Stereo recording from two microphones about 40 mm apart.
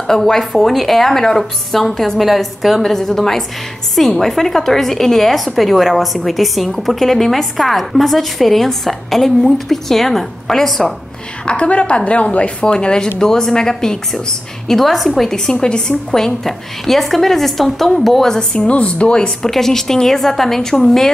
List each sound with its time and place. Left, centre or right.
0.0 s a woman's voice: centre
11.4 s a woman's voice: left; by 15.3 s centre
15.6 s a woman's voice: centre
18.7 s a woman's voice: left
19.5 s a woman's voice: centre